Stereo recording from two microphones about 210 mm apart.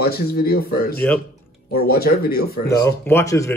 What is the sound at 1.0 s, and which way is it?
Speech, 5° left (ahead or behind).